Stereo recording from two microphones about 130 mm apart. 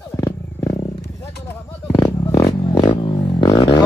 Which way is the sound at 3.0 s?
30° left (ahead or behind).